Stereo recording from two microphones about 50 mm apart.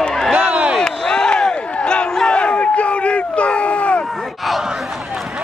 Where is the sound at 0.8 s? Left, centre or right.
Centre.